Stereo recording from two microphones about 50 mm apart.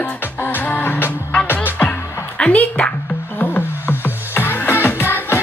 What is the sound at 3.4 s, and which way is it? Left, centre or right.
Music, left.